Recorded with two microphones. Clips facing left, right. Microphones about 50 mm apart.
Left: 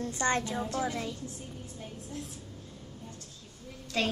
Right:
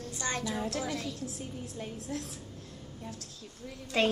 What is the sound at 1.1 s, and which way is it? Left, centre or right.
A woman's voice, right.